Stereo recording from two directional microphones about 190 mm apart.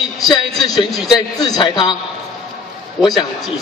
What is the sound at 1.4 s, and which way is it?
Speech, 20° left (ahead or behind).